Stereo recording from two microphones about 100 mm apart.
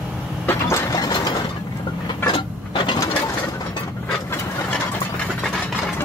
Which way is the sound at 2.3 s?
50° left (ahead or behind).